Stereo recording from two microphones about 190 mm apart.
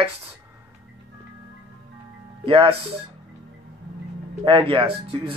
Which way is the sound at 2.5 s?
30° right (ahead or behind).